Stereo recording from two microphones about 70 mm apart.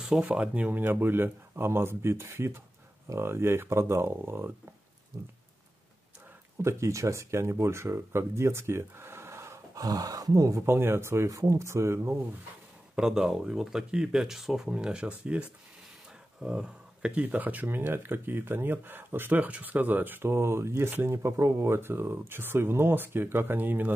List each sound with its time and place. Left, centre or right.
0.0 s speech: centre
0.4 s speech: right
6.6 s speech: right
9.8 s speech: right
10.6 s speech: right
11.2 s speech: right
12.9 s speech: centre; by 23.9 s right